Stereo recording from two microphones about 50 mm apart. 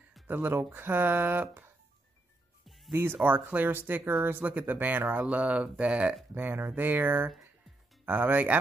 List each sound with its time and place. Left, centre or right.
0.3 s speech: right
2.9 s speech: right
3.3 s speech: right
6.3 s speech: right